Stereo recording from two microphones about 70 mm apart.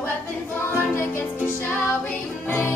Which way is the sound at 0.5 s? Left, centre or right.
Left.